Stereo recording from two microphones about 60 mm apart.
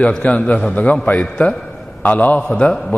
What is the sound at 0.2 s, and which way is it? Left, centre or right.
Speech, left.